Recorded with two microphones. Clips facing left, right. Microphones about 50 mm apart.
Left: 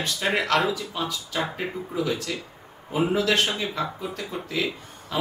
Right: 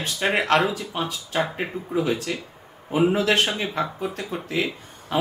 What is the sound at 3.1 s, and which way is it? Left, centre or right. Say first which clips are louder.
Speech: right 2 dB; right.